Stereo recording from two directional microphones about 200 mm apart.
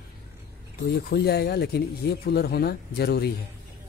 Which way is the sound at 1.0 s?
55° left (ahead or behind).